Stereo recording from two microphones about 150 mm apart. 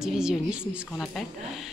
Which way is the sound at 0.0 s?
5° right (ahead or behind).